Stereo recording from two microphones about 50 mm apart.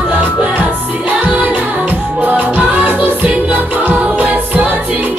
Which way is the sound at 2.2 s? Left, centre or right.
Right.